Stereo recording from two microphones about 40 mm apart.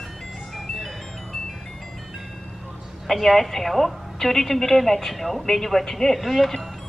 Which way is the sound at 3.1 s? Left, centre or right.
Centre.